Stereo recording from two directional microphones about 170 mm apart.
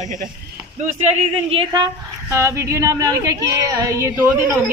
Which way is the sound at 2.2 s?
15° right (ahead or behind).